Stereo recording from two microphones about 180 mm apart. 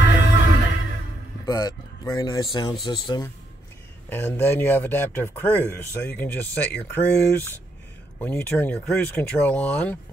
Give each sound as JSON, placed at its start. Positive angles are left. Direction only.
{"t": 0.0, "sound": "music", "side_deg": 80}
{"t": 1.4, "sound": "speech", "side_deg": 20}
{"t": 4.1, "sound": "speech", "side_deg": 10}